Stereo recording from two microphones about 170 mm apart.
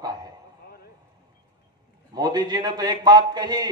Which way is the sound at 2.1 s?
25° right (ahead or behind).